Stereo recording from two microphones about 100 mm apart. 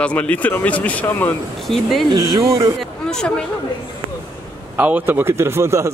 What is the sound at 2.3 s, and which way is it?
Speech, 35° right (ahead or behind).